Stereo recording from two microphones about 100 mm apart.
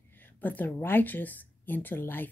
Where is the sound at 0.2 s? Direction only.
20° left (ahead or behind).